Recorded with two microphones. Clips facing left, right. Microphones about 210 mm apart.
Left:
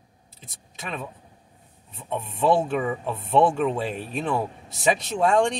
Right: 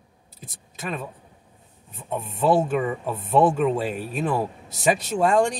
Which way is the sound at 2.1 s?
Centre (ahead or behind).